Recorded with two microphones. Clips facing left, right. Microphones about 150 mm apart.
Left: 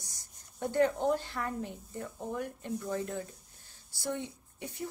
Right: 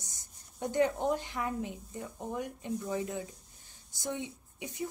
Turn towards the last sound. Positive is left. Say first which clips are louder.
# right 2 dB
turn(degrees=-15)  # may be behind; listen again after turning